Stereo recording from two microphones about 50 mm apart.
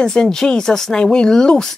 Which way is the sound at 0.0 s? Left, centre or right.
Centre.